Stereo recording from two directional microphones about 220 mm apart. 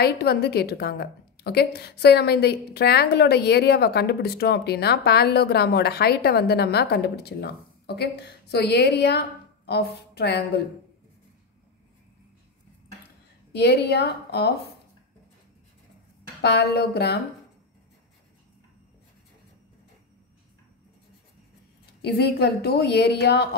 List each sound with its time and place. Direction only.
0.0 s a woman's voice: 45° left (ahead or behind)
13.5 s a woman's voice: 50° left (ahead or behind)
16.3 s a woman's voice: 45° left (ahead or behind)
22.0 s a woman's voice: 50° left (ahead or behind)